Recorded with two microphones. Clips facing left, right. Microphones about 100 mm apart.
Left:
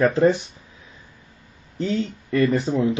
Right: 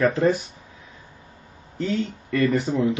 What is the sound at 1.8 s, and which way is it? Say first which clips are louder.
Speech: left 1 dB; 30° left (ahead or behind).